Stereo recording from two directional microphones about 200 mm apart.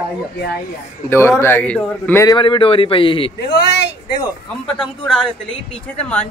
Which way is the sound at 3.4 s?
60° left (ahead or behind).